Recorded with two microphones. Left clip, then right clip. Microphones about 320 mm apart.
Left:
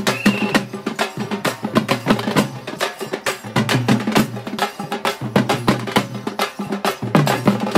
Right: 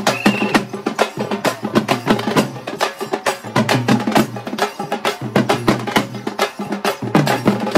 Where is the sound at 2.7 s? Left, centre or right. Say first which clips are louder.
Right 3 dB; centre.